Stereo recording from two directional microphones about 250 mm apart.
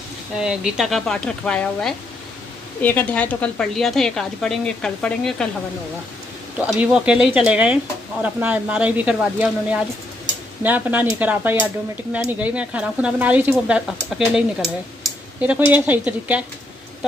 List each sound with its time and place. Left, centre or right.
0.4 s speech: centre
6.6 s speech: centre